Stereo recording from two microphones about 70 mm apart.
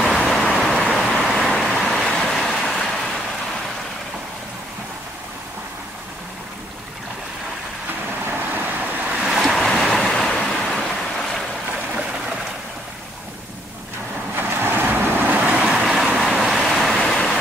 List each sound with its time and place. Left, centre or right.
0.0 s vehicle: centre
8.5 s vehicle: right
9.2 s waves: centre
14.3 s vehicle: right
15.6 s vehicle: centre